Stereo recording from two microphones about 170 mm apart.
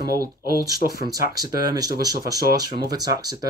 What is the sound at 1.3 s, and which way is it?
Speech, 20° right (ahead or behind).